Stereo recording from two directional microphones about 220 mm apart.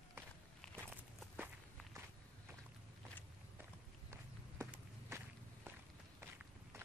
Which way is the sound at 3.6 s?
10° right (ahead or behind).